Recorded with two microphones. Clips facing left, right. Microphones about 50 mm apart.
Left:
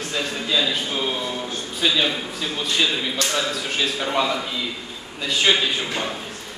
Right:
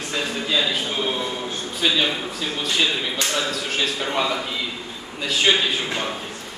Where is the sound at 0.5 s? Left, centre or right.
Centre.